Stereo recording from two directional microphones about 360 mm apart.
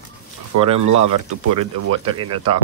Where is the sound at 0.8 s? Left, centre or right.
Right.